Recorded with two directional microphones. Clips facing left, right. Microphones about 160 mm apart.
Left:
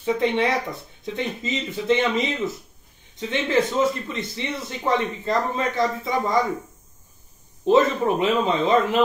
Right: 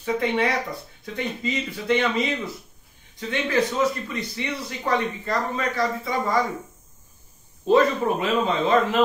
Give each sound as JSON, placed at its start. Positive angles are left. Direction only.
{"t": 0.0, "sound": "speech", "side_deg": 25}
{"t": 7.6, "sound": "speech", "side_deg": 20}